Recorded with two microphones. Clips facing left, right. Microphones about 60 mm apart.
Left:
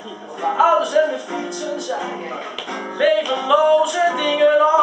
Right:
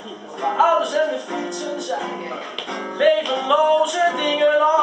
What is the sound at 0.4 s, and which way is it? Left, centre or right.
Music, centre.